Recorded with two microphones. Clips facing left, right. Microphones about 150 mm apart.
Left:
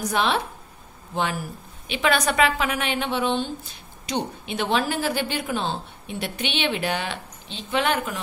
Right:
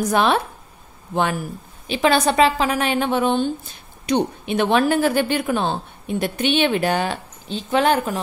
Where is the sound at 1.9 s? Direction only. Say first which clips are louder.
Right 5 dB; 35° right (ahead or behind).